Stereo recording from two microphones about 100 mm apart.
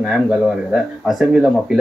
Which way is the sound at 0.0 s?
5° right (ahead or behind).